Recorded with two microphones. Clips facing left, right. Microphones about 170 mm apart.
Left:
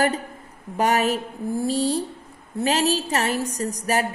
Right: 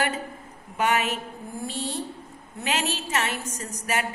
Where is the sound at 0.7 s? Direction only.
40° left (ahead or behind).